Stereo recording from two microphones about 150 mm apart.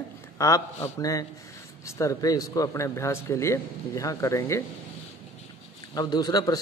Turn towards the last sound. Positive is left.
turn(degrees=25)  # may be behind; listen again after turning